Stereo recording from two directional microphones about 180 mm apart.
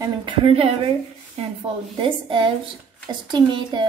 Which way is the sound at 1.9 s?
25° right (ahead or behind).